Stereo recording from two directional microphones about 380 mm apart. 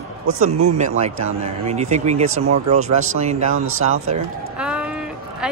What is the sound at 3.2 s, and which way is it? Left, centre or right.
Speech, centre.